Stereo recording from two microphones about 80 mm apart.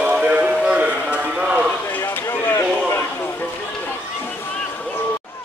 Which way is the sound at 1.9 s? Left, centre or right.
Left.